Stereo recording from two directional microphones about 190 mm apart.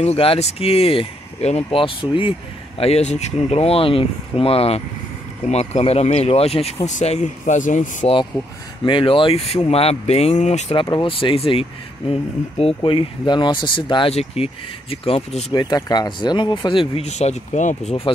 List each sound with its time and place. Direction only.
0.0 s speech: 30° left (ahead or behind)
8.8 s speech: 25° left (ahead or behind)